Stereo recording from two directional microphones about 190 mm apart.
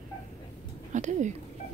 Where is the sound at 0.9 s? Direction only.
40° right (ahead or behind).